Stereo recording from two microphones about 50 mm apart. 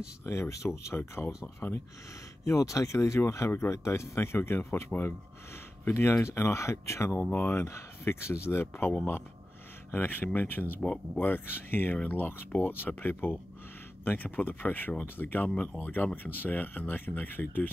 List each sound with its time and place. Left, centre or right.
0.2 s speech: left
0.9 s speech: left
2.4 s speech: left
3.2 s speech: left
6.1 s speech: left
9.9 s speech: left
15.4 s speech: left
15.8 s speech: left